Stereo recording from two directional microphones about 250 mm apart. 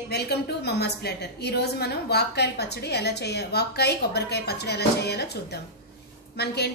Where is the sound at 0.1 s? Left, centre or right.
Left.